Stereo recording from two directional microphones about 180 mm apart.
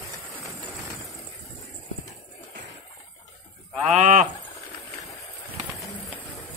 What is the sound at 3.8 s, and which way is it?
Speech, 45° right (ahead or behind).